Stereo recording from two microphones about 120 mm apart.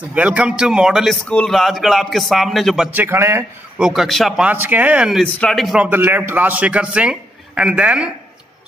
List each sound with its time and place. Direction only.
0.1 s a man's voice: 10° right (ahead or behind)
2.9 s a man's voice: 20° right (ahead or behind)
3.7 s speech: 5° right (ahead or behind)
4.5 s a man's voice: 15° right (ahead or behind)
5.2 s speech: 5° left (ahead or behind)
5.8 s a man's voice: 15° right (ahead or behind)